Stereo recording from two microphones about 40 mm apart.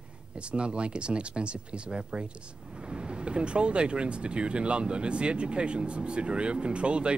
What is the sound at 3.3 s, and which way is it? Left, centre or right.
Speech, right.